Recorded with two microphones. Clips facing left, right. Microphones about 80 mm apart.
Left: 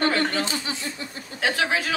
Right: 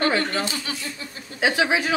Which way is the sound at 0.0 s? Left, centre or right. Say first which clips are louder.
Even; right.